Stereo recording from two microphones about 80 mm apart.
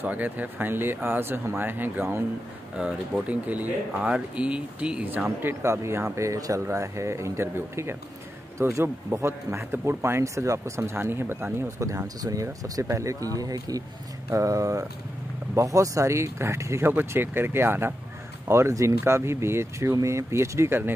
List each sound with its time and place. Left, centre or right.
0.0 s speech: right
5.4 s speech: right
10.8 s speech: right